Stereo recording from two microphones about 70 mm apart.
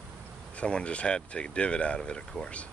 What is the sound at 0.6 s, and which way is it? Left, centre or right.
Speech, centre.